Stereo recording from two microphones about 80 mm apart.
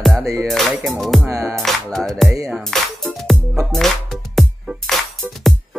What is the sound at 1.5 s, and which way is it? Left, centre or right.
Music, centre.